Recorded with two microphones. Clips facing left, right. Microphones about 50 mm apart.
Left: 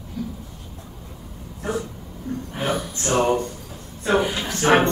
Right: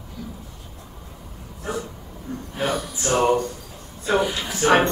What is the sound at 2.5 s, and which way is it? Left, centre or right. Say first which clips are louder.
Speech: right 1 dB; centre.